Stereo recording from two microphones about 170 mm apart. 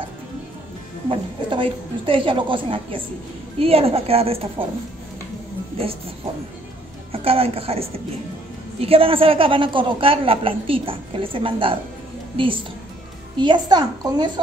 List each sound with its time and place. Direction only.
1.0 s a woman's voice: 30° right (ahead or behind)
7.1 s a woman's voice: 35° right (ahead or behind)
13.4 s a child's voice: 25° right (ahead or behind)